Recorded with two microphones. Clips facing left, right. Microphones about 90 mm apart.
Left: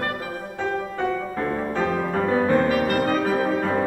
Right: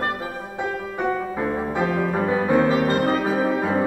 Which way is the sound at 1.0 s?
15° right (ahead or behind).